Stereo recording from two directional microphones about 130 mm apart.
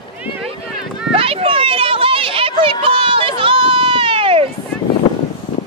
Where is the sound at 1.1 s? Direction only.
45° right (ahead or behind).